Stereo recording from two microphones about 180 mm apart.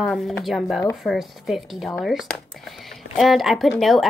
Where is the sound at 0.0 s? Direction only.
Centre (ahead or behind).